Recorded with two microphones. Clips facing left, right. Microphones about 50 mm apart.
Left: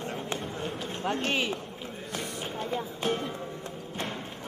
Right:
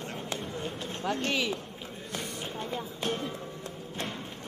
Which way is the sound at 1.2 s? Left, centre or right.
Left.